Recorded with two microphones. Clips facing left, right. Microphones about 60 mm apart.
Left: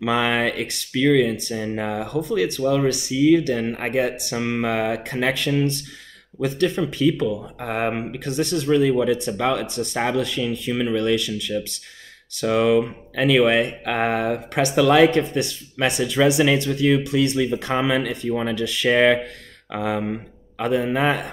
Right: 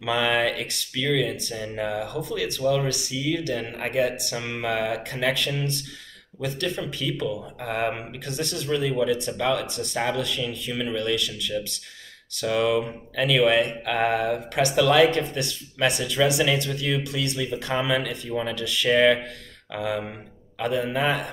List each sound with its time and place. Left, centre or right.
0.0 s speech: left
6.9 s speech: left